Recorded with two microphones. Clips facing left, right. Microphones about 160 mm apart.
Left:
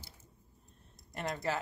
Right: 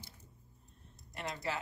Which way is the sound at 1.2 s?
50° left (ahead or behind).